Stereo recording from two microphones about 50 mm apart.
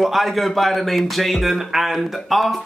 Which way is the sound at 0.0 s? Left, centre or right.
Centre.